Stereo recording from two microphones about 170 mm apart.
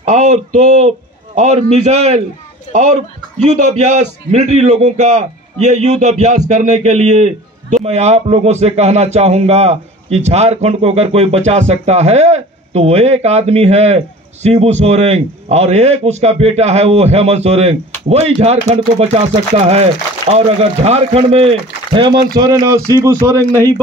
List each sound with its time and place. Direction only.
0.0 s a man's voice: 40° right (ahead or behind); by 23.4 s 20° right (ahead or behind)